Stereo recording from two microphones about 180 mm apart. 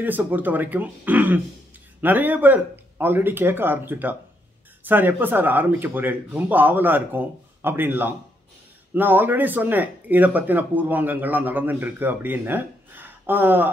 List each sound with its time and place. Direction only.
0.0 s speech: 10° right (ahead or behind)